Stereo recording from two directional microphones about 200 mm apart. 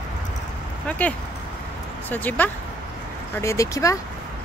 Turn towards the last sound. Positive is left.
turn(degrees=15)  # may be behind; listen again after turning